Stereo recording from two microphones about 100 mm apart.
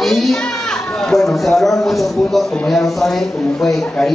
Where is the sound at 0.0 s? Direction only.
5° left (ahead or behind).